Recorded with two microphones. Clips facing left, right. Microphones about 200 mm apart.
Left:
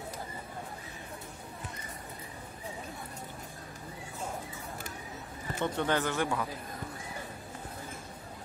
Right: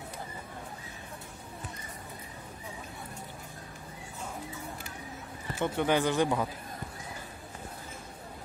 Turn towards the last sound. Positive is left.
turn(degrees=-20)  # may be behind; listen again after turning